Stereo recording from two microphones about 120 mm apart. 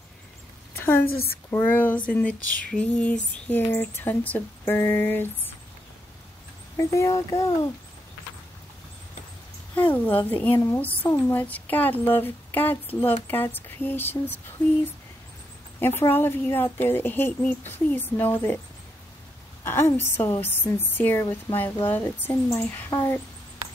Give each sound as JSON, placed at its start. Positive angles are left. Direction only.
{"t": 0.7, "sound": "a sound", "side_deg": 20}
{"t": 1.5, "sound": "a woman's voice", "side_deg": 15}
{"t": 6.8, "sound": "speech", "side_deg": 25}
{"t": 10.0, "sound": "a woman's voice", "side_deg": 15}
{"t": 13.3, "sound": "a woman's voice", "side_deg": 15}
{"t": 16.0, "sound": "a woman's voice", "side_deg": 20}
{"t": 19.6, "sound": "a woman's voice", "side_deg": 20}
{"t": 22.8, "sound": "speech", "side_deg": 30}